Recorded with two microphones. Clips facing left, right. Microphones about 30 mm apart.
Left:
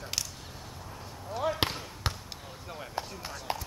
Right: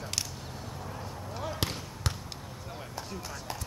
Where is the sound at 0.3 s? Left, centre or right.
Centre.